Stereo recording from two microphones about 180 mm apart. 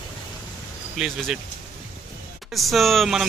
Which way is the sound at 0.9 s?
Centre (ahead or behind).